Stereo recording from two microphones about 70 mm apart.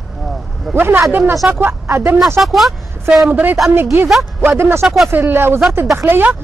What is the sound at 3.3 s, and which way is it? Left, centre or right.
Speech, right.